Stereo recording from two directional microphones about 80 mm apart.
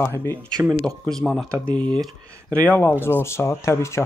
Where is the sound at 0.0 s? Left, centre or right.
Left.